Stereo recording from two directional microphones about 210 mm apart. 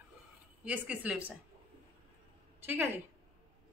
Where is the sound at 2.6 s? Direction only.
10° right (ahead or behind).